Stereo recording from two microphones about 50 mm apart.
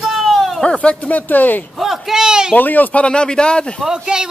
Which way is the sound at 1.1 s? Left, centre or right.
Left.